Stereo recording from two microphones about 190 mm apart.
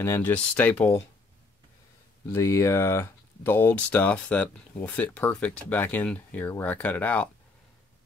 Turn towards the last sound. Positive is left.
turn(degrees=10)  # may be behind; listen again after turning